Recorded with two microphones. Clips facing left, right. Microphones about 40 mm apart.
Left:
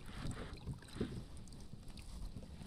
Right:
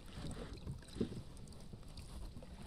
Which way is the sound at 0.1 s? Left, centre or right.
Centre.